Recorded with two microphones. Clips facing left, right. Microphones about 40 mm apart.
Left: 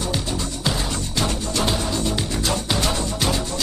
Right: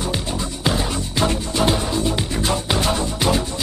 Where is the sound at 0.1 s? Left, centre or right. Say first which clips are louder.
Right 1 dB; centre.